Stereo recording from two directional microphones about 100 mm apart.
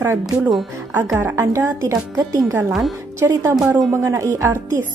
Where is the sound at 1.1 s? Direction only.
20° right (ahead or behind).